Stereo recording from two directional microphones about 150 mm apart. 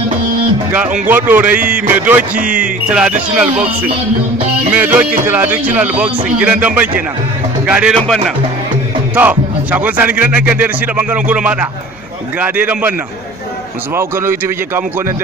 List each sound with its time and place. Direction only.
1.0 s speech: 10° right (ahead or behind)
9.1 s speech: 10° right (ahead or behind)
13.9 s speech: 15° right (ahead or behind)